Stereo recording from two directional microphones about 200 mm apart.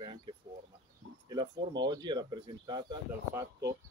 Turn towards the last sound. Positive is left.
turn(degrees=-20)  # may be behind; listen again after turning